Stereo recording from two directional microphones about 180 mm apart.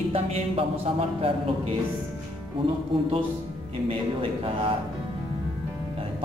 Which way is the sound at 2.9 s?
30° right (ahead or behind).